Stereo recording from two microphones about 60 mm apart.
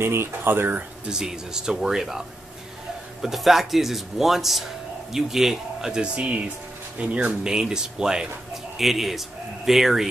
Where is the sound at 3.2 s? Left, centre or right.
Centre.